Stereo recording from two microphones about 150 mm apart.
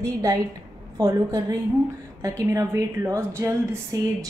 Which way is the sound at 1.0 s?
20° right (ahead or behind).